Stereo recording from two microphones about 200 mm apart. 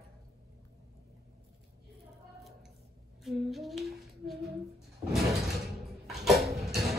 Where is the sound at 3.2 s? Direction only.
Centre (ahead or behind).